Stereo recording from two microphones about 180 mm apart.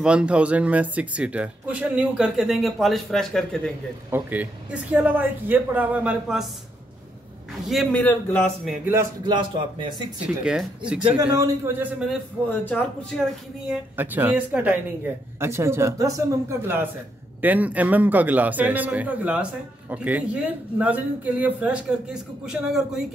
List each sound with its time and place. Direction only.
0.0 s speech: 5° right (ahead or behind)
4.1 s speech: 10° right (ahead or behind)
7.6 s speech: centre (ahead or behind)
8.0 s speech: 10° left (ahead or behind)
9.2 s speech: 25° right (ahead or behind)
10.2 s speech: 5° right (ahead or behind)
11.0 s speech: 25° right (ahead or behind)
12.4 s speech: 10° left (ahead or behind)
13.7 s speech: 10° right (ahead or behind)